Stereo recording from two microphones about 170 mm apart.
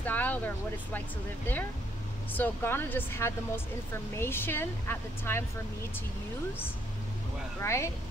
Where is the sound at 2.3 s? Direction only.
10° left (ahead or behind).